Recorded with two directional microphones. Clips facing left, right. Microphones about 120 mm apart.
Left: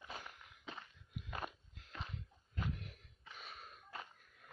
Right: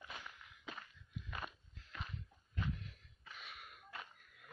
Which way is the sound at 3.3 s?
35° left (ahead or behind).